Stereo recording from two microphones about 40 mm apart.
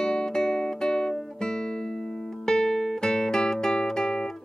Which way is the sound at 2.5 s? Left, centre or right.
Centre.